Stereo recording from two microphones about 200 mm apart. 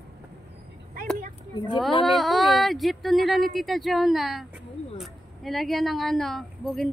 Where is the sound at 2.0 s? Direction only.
Centre (ahead or behind).